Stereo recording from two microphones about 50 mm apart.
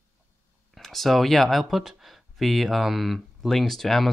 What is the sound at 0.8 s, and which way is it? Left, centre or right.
Speech, centre.